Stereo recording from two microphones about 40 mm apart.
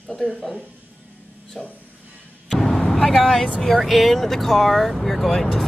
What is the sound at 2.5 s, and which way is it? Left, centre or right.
Vehicle, centre.